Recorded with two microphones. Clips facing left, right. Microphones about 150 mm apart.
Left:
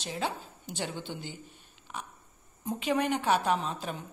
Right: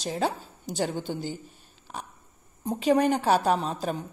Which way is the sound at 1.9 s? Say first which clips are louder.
Right 2 dB; 35° right (ahead or behind).